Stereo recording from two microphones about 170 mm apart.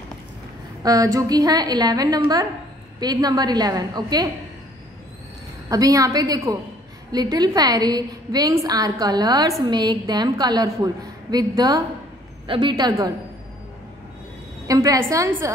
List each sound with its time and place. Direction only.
0.8 s a woman's voice: 20° right (ahead or behind)
5.7 s a woman's voice: 20° right (ahead or behind)
14.7 s a woman's voice: 20° right (ahead or behind)